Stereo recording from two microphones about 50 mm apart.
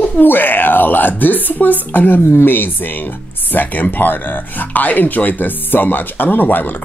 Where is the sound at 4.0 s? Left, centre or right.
Left.